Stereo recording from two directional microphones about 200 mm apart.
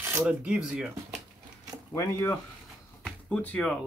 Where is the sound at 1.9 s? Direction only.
15° left (ahead or behind).